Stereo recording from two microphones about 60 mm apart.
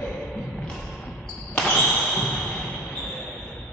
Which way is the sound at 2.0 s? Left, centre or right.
Centre.